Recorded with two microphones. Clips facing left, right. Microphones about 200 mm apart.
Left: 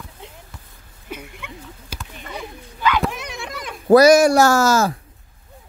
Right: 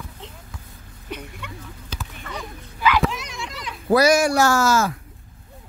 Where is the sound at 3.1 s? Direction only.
55° left (ahead or behind); by 4.9 s 40° left (ahead or behind).